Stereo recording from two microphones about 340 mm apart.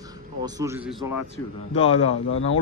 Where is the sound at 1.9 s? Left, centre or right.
Left.